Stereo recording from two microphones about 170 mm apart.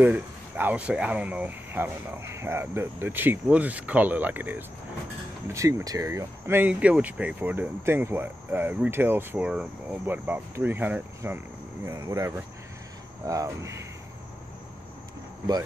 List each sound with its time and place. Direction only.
0.0 s speech: 10° right (ahead or behind)
13.2 s cricket: 20° right (ahead or behind)